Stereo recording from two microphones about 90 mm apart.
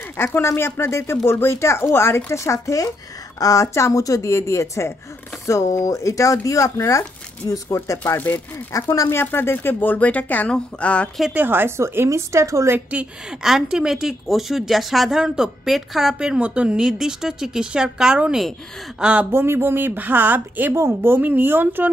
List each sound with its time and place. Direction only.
0.2 s speech: 25° left (ahead or behind)
8.0 s speech: 20° left (ahead or behind)
8.7 s speech: 35° left (ahead or behind)
9.2 s speech: 25° left (ahead or behind)
11.3 s speech: 20° right (ahead or behind)
13.4 s a woman's voice: 5° right (ahead or behind)
19.3 s speech: 25° right (ahead or behind)